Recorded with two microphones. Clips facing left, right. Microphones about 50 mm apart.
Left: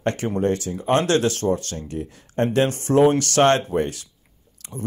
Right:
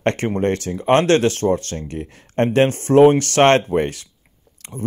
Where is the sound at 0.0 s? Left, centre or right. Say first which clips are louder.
Right 3 dB; right.